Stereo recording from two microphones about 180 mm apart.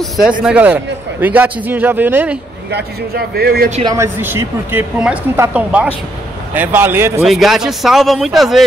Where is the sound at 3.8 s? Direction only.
15° right (ahead or behind).